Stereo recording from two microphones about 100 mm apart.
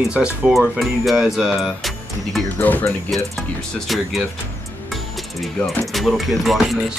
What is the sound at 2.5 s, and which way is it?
Music, 15° left (ahead or behind).